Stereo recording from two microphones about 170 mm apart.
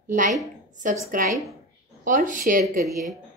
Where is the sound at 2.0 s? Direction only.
50° right (ahead or behind).